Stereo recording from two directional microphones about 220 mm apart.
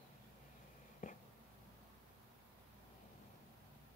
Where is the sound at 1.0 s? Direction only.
35° left (ahead or behind).